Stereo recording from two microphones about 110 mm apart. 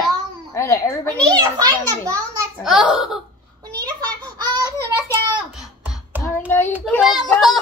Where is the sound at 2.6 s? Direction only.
5° right (ahead or behind).